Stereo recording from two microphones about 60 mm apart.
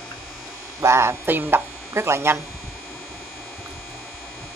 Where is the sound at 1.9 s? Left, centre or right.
Right.